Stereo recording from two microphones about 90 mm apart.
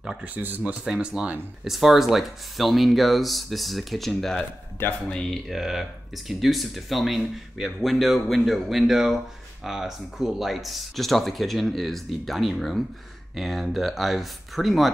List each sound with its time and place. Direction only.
0.2 s speech: 20° right (ahead or behind); by 4.4 s 5° left (ahead or behind)
4.4 s speech: 20° left (ahead or behind)
5.1 s speech: centre (ahead or behind)